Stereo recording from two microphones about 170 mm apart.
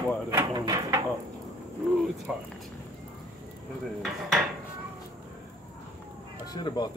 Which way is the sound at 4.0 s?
Centre (ahead or behind).